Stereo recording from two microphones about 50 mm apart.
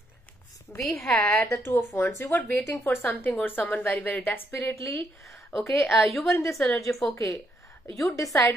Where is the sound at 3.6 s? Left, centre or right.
Left.